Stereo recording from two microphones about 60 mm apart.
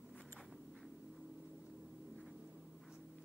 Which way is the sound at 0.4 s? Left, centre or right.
Centre.